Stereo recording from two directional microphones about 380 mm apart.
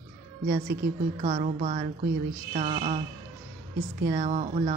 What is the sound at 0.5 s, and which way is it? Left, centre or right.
Speech, right.